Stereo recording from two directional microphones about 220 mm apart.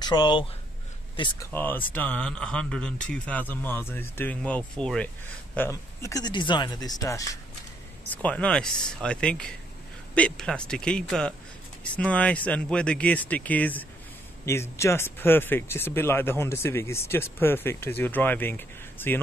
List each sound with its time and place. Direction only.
0.0 s speech: 20° left (ahead or behind)
1.5 s speech: 10° left (ahead or behind)